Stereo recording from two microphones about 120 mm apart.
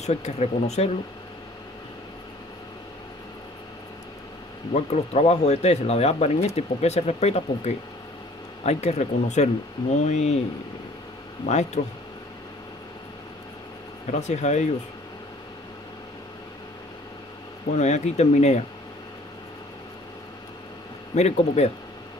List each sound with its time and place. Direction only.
0.0 s speech: 65° left (ahead or behind)
4.7 s speech: 60° left (ahead or behind)
11.4 s speech: 75° left (ahead or behind)
14.2 s speech: 75° left (ahead or behind)
17.7 s speech: 75° left (ahead or behind)
21.1 s speech: 65° left (ahead or behind)